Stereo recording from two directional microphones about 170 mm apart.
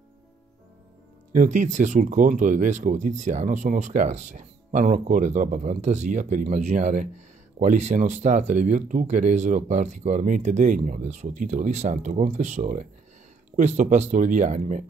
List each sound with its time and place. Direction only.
1.3 s speech: 50° right (ahead or behind)